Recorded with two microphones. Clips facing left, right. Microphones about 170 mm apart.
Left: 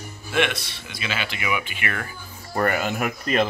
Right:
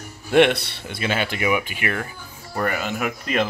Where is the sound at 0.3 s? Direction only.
65° right (ahead or behind).